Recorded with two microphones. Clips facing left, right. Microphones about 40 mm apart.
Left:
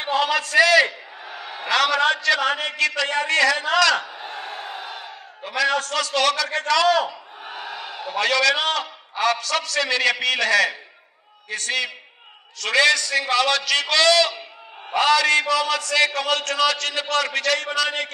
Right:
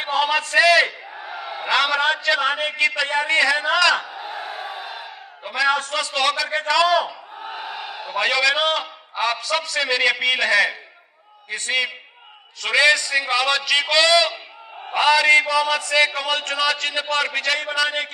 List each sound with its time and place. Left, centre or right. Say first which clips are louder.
0.0 s a man's voice: right 1 dB; centre